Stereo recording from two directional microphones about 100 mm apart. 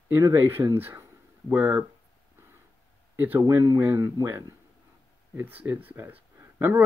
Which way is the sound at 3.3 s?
30° right (ahead or behind).